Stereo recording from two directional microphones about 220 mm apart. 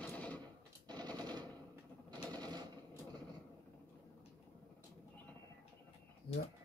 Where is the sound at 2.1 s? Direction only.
20° right (ahead or behind).